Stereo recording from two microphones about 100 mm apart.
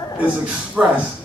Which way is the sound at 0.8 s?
10° right (ahead or behind).